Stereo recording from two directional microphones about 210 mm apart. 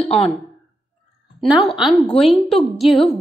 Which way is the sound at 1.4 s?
Centre (ahead or behind).